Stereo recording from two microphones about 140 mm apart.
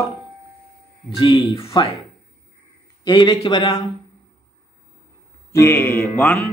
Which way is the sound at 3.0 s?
35° left (ahead or behind).